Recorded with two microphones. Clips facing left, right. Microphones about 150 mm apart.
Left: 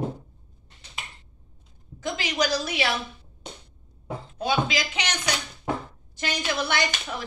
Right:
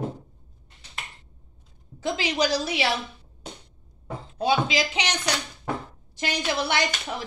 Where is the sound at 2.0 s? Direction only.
30° right (ahead or behind).